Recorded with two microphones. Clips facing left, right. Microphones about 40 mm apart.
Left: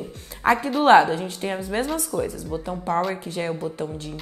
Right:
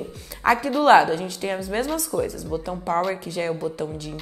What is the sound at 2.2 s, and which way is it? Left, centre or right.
Speech, left.